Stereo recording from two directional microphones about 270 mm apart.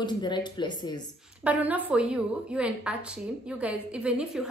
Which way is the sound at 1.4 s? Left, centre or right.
Centre.